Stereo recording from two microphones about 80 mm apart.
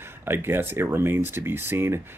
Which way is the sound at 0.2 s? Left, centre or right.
Right.